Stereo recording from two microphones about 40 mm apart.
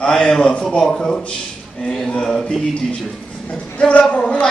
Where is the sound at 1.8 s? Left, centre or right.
Centre.